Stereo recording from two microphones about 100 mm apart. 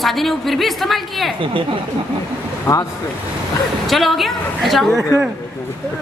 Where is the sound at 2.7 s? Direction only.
35° left (ahead or behind).